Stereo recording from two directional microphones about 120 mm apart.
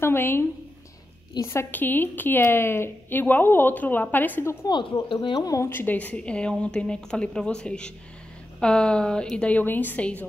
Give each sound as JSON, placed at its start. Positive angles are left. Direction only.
{"t": 0.0, "sound": "a woman's voice", "side_deg": 20}
{"t": 4.6, "sound": "speech", "side_deg": 40}
{"t": 5.5, "sound": "a woman's voice", "side_deg": 20}